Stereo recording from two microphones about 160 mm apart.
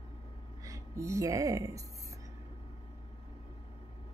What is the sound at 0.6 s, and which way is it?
A woman's voice, 20° right (ahead or behind).